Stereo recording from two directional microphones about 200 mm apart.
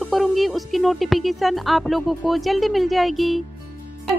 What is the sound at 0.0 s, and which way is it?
Speech, centre (ahead or behind).